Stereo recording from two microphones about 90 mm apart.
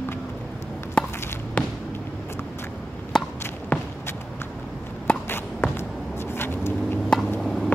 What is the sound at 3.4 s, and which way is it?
Walk, 20° left (ahead or behind).